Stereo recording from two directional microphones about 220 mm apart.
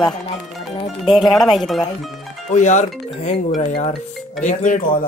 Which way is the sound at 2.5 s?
35° left (ahead or behind).